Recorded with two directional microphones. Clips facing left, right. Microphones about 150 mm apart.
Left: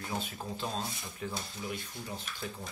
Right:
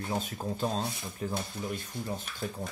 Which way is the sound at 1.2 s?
40° right (ahead or behind).